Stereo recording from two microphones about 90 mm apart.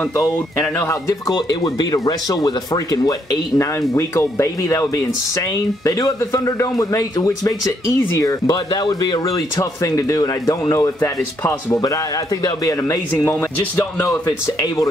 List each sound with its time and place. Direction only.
0.1 s speech: 35° left (ahead or behind)
3.9 s speech: 30° left (ahead or behind)
13.1 s speech: 15° left (ahead or behind)
14.0 s speech: 30° left (ahead or behind)